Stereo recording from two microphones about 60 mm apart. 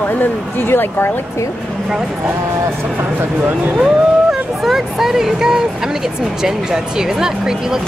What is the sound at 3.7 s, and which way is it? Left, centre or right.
Speech, centre.